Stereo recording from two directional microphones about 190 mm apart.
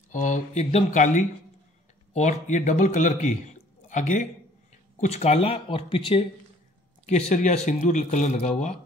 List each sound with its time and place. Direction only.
0.1 s speech: 40° left (ahead or behind)